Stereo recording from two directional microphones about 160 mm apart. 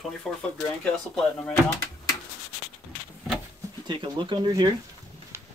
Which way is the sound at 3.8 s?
30° right (ahead or behind).